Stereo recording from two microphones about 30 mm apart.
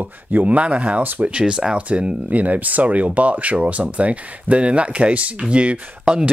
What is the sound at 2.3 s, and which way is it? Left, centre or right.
Speech, right.